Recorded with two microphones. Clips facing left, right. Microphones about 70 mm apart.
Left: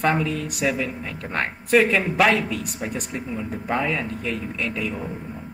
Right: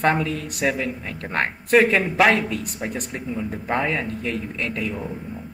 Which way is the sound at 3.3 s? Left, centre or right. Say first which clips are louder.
Right 1 dB; centre.